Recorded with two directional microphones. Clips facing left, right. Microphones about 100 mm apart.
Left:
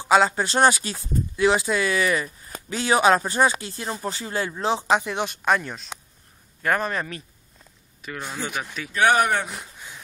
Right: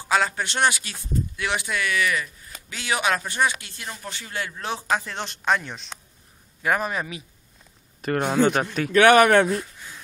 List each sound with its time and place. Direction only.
0.0 s speech: 25° left (ahead or behind)
0.5 s speech: 40° left (ahead or behind); by 7.2 s 5° right (ahead or behind)
8.0 s speech: 60° right (ahead or behind)
9.5 s speech: 15° left (ahead or behind)